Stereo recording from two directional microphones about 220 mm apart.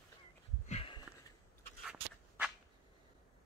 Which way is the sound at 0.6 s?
25° left (ahead or behind).